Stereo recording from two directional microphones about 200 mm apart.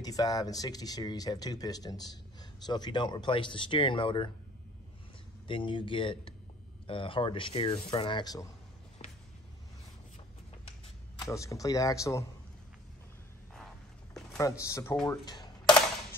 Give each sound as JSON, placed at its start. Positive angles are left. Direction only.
{"t": 0.0, "sound": "speech", "side_deg": 20}
{"t": 5.5, "sound": "speech", "side_deg": 25}
{"t": 9.0, "sound": "music", "side_deg": 35}
{"t": 11.1, "sound": "speech", "side_deg": 15}
{"t": 14.6, "sound": "speech", "side_deg": 15}